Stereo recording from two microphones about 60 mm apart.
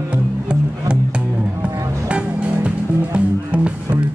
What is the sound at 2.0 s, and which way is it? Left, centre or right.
Music, centre.